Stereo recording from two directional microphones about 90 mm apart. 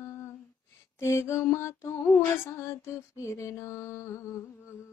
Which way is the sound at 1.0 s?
30° left (ahead or behind).